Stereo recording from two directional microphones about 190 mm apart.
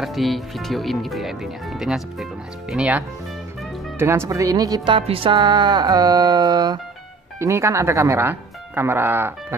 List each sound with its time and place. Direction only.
0.0 s speech: centre (ahead or behind)
4.0 s speech: 15° right (ahead or behind)